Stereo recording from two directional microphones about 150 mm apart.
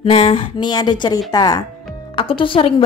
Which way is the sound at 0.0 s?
35° left (ahead or behind).